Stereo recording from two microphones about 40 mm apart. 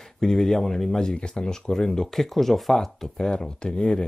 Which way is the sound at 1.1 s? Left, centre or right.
Left.